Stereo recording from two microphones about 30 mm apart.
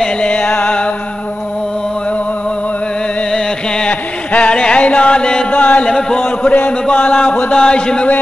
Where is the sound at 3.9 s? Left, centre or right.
Left.